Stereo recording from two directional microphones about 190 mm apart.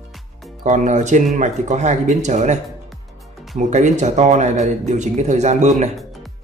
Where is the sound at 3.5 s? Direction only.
40° right (ahead or behind).